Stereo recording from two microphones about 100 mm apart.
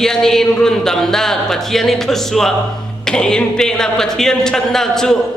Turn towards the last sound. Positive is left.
turn(degrees=5)  # may be behind; listen again after turning